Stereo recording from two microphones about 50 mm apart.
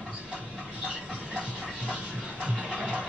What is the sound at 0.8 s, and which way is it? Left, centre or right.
Music, right.